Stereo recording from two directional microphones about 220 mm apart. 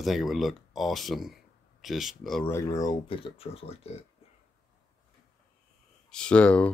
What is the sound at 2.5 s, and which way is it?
Speech, 15° left (ahead or behind).